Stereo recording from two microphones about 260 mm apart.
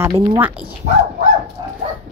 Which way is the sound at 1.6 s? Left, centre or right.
Centre.